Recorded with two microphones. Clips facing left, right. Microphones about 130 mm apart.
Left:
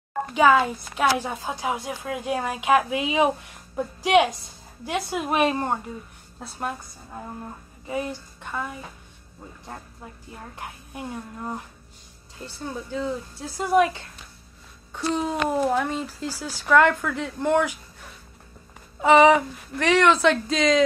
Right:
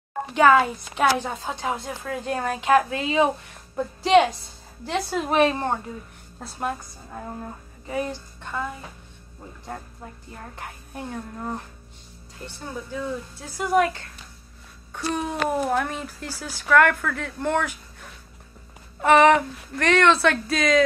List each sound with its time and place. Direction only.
0.3 s a woman's voice: 5° left (ahead or behind)
7.9 s a woman's voice: 10° left (ahead or behind)
10.6 s a woman's voice: 15° left (ahead or behind)
13.6 s a woman's voice: 20° left (ahead or behind)
18.9 s a woman's voice: 15° left (ahead or behind)